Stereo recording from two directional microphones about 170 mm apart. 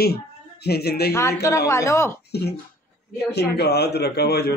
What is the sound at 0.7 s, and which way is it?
Speech, 70° left (ahead or behind).